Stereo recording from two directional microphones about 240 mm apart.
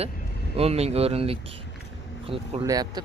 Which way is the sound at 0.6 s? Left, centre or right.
Right.